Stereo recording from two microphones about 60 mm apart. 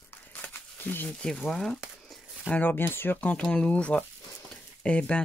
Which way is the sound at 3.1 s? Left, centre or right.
Left.